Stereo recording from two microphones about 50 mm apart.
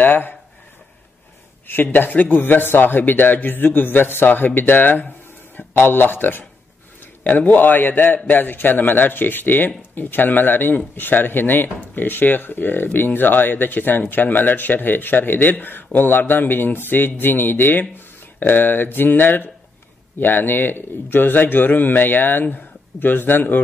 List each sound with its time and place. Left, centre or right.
0.0 s speech: left
1.7 s speech: left